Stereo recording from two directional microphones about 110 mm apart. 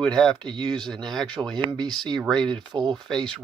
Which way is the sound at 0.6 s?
40° right (ahead or behind).